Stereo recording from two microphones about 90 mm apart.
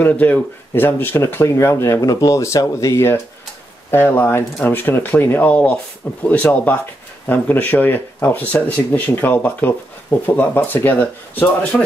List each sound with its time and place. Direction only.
0.0 s speech: 15° left (ahead or behind)